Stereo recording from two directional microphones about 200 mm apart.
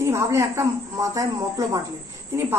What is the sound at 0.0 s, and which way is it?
A man's voice, 15° right (ahead or behind).